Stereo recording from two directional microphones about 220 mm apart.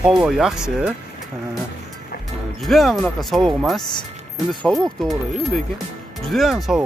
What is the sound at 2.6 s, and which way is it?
Speech, centre (ahead or behind).